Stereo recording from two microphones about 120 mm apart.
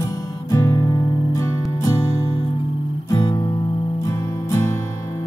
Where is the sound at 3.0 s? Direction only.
30° left (ahead or behind).